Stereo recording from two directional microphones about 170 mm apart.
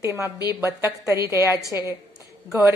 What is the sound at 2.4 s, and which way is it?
Speech, 5° right (ahead or behind).